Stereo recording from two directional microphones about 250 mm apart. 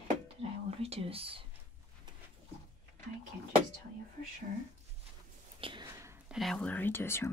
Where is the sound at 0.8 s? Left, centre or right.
Right.